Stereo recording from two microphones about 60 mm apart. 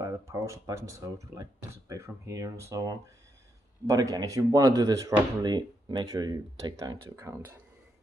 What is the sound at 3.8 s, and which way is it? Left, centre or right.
Speech, right.